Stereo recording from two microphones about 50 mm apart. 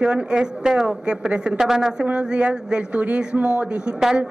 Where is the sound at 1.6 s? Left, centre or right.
Centre.